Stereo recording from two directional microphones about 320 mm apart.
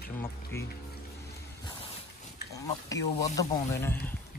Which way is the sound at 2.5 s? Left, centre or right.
Centre.